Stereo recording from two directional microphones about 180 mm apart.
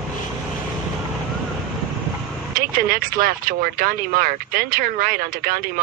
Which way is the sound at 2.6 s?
55° right (ahead or behind).